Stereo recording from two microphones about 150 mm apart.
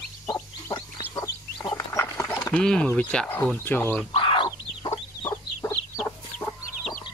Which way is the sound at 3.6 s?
15° left (ahead or behind).